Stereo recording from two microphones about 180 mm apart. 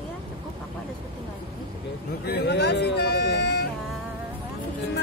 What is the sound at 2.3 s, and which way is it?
Vehicle, 65° left (ahead or behind).